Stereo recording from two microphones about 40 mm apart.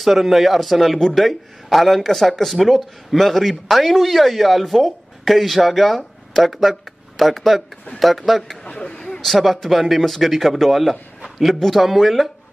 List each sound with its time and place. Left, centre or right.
0.0 s speech: centre
8.6 s speech: left
8.9 s a sound: centre
9.2 s speech: centre